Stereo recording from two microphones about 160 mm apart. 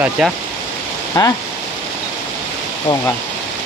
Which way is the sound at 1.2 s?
20° left (ahead or behind).